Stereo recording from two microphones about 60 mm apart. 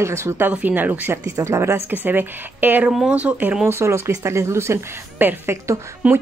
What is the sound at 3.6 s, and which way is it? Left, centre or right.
A woman's voice, right.